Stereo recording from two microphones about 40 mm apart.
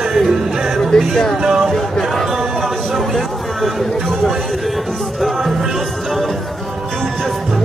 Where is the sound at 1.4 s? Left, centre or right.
Centre.